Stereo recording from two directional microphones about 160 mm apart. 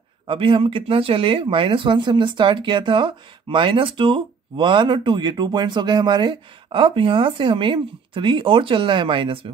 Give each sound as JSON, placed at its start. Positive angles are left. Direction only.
{"t": 0.3, "sound": "speech", "side_deg": -30}